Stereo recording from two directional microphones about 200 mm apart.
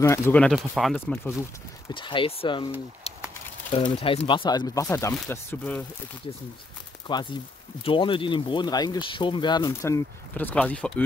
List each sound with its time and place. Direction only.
0.0 s speech: 10° left (ahead or behind)
1.9 s speech: 25° left (ahead or behind)
7.1 s speech: 25° left (ahead or behind); by 11.1 s 5° left (ahead or behind)